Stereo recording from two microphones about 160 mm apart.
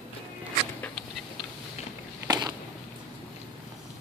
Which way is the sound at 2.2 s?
25° right (ahead or behind).